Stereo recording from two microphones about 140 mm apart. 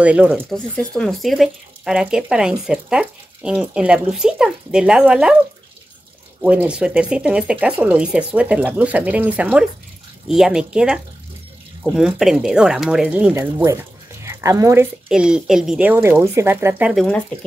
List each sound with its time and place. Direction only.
0.0 s speech: 10° right (ahead or behind)
6.4 s speech: 10° right (ahead or behind)
13.3 s speech: 15° right (ahead or behind)
15.0 s speech: 5° right (ahead or behind)
16.9 s speech: 5° left (ahead or behind)